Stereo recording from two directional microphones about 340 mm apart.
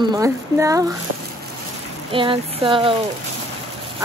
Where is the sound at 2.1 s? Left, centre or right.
Centre.